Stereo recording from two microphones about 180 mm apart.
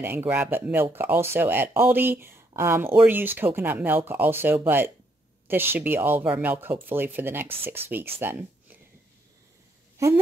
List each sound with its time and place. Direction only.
0.0 s speech: 10° right (ahead or behind)
9.9 s speech: 15° right (ahead or behind)